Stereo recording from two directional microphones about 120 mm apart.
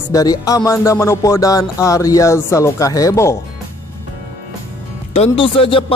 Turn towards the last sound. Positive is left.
turn(degrees=50)  # may be behind; listen again after turning